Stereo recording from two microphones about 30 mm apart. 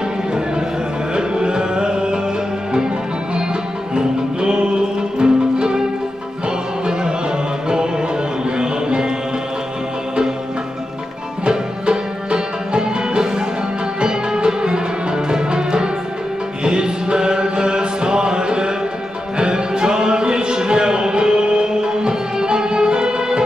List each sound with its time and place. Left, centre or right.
1.1 s music: right
3.9 s music: right
6.9 s music: right
8.5 s music: right
11.4 s music: right
16.6 s chant: right
19.3 s music: right